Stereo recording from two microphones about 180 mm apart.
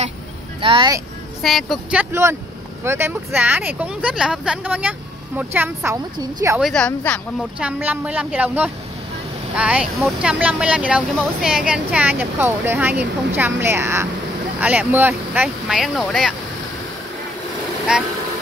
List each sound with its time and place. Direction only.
0.6 s speech: 30° right (ahead or behind)
1.4 s speech: centre (ahead or behind)
6.6 s speech: 5° left (ahead or behind)
7.5 s speech: 10° right (ahead or behind)
17.9 s speech: 5° right (ahead or behind)